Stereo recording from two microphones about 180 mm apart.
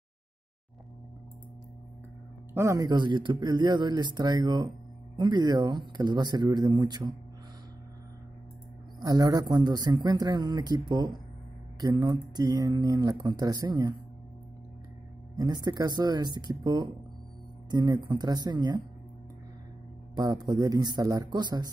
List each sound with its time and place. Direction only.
2.5 s speech: 15° right (ahead or behind)
9.0 s speech: 20° right (ahead or behind)
15.3 s speech: 20° right (ahead or behind)
20.2 s speech: 20° right (ahead or behind)